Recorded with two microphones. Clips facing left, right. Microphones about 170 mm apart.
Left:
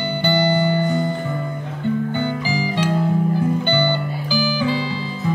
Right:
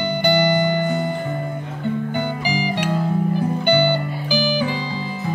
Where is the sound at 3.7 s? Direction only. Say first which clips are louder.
Right 2 dB; 15° right (ahead or behind).